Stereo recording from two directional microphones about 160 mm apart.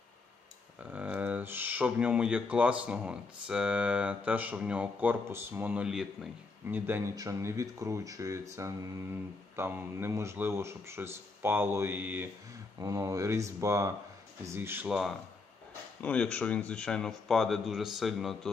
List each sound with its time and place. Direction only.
0.7 s speech: 10° right (ahead or behind)
6.7 s speech: 15° right (ahead or behind)
16.0 s speech: 10° left (ahead or behind)